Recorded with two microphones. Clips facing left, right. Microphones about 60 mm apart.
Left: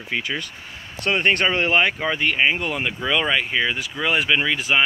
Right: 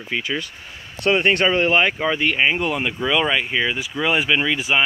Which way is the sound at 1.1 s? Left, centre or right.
Centre.